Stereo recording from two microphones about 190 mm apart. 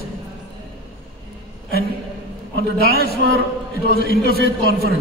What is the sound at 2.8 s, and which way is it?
A man's voice, 55° left (ahead or behind).